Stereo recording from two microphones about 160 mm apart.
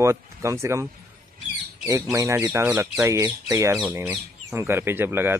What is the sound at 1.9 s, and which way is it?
Speech, 20° right (ahead or behind).